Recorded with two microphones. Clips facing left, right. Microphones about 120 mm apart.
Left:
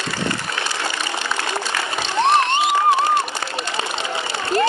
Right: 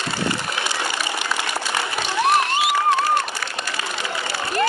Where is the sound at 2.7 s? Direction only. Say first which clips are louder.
Left 1 dB; 20° left (ahead or behind).